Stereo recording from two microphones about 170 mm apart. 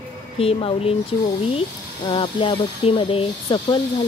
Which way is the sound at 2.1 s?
30° left (ahead or behind).